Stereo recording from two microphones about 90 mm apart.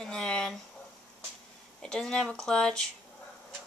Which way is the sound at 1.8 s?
10° left (ahead or behind).